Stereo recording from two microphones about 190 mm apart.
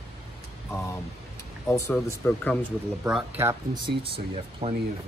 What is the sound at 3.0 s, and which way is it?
Speech, 5° right (ahead or behind).